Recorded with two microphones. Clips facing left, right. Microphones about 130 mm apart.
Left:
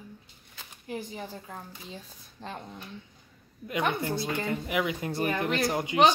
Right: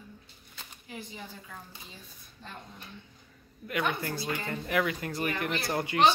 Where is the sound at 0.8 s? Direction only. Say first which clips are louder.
Left 7 dB; 45° left (ahead or behind).